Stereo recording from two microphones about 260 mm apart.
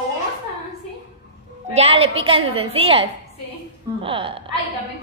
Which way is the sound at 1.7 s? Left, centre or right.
Right.